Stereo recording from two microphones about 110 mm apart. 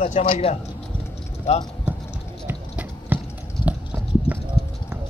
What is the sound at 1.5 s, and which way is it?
Speech, 80° left.